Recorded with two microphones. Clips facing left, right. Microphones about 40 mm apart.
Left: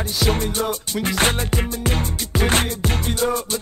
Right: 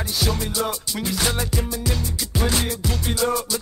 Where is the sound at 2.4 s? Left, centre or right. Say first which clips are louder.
Left 4 dB; left.